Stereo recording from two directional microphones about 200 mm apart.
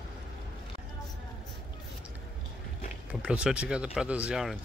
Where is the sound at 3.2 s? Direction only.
5° right (ahead or behind).